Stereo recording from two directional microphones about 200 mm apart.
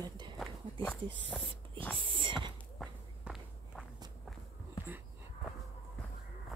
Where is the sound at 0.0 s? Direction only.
20° right (ahead or behind).